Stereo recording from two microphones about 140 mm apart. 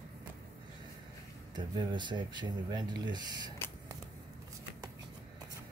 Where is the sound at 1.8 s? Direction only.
35° right (ahead or behind).